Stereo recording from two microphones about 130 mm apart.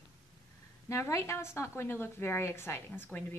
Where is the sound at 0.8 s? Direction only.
25° left (ahead or behind).